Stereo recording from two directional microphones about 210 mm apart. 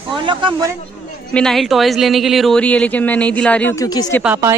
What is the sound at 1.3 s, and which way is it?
Speech, 5° left (ahead or behind).